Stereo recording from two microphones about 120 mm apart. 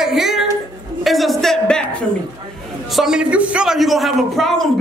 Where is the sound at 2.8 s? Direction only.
Centre (ahead or behind).